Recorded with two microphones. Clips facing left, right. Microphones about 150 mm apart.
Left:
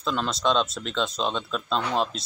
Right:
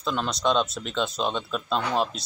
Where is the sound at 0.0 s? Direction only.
Centre (ahead or behind).